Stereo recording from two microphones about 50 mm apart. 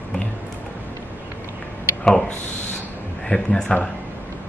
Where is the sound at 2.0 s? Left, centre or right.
Centre.